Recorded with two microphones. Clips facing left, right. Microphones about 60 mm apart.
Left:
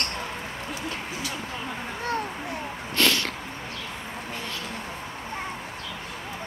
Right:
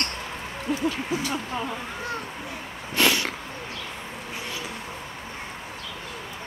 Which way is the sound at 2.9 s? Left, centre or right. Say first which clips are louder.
Right 2 dB; centre.